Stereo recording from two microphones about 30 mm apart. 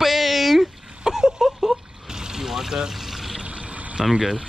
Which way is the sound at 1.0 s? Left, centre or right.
Centre.